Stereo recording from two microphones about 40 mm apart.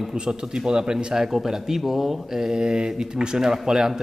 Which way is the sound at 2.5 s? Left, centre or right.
Centre.